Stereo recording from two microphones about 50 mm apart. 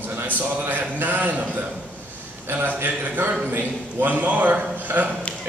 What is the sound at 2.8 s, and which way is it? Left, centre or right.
A man's voice, right.